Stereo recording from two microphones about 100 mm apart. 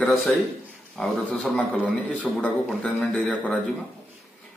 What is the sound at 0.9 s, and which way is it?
Speech, centre (ahead or behind).